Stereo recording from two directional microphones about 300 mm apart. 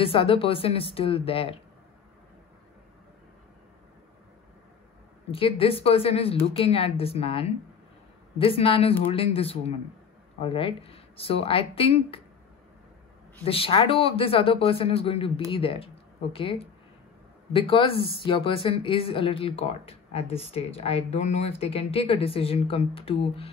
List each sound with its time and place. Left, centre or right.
0.0 s speech: centre
5.3 s speech: centre
13.5 s speech: centre